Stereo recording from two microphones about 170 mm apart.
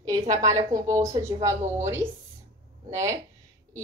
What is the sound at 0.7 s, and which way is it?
Speech, 20° right (ahead or behind).